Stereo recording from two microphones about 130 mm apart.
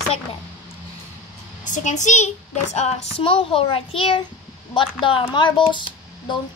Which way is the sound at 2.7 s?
50° left (ahead or behind).